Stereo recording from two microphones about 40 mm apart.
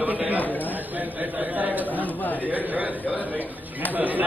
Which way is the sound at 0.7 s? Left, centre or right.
Right.